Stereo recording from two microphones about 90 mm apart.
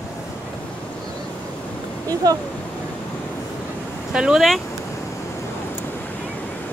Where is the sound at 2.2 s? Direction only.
45° right (ahead or behind).